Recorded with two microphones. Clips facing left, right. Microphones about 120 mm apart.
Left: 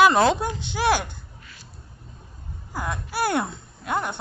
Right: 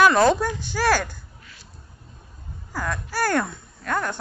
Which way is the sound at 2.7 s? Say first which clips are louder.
Right 1 dB; 20° left (ahead or behind).